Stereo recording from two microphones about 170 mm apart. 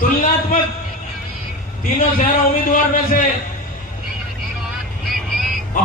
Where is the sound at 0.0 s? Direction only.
55° left (ahead or behind).